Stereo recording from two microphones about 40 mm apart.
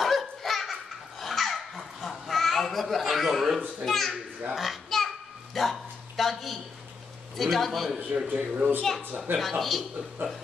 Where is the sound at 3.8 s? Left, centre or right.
Centre.